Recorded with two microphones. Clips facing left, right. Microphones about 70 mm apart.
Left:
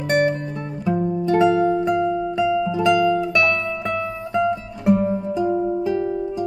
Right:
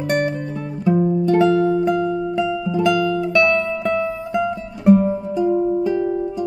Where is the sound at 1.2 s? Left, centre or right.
Centre.